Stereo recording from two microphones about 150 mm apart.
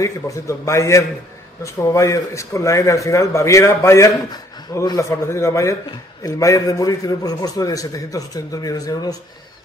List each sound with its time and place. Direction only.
0.0 s a man's voice: 20° left (ahead or behind)